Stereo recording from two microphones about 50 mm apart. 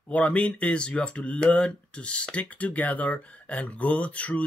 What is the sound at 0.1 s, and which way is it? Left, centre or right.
Speech, left.